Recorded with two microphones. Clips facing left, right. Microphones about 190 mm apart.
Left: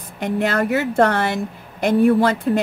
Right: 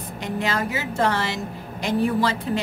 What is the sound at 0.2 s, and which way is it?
A woman's voice, 55° left (ahead or behind).